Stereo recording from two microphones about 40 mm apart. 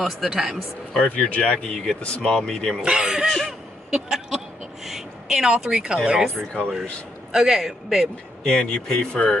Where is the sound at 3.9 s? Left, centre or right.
Centre.